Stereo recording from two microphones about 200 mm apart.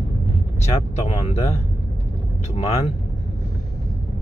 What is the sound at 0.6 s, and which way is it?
Speech, 35° left (ahead or behind).